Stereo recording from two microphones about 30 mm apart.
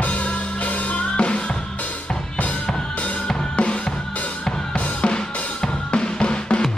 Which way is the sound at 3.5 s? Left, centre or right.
Left.